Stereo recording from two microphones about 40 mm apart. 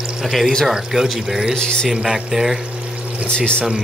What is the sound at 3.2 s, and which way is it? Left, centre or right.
Speech, left.